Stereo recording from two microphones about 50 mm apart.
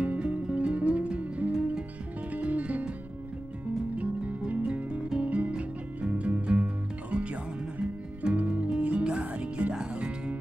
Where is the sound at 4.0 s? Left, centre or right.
Right.